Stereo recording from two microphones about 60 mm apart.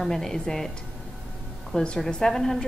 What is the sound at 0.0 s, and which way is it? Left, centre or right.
Speech, centre.